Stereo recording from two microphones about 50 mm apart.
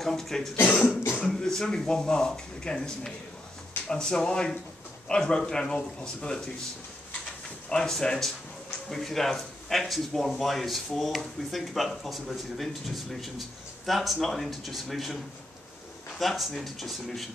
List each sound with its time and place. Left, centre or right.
0.0 s speech: centre
7.7 s speech: centre
16.2 s speech: centre